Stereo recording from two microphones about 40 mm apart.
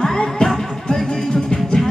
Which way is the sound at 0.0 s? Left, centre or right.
Centre.